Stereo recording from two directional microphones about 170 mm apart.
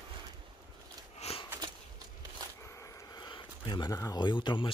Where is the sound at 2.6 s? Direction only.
15° left (ahead or behind).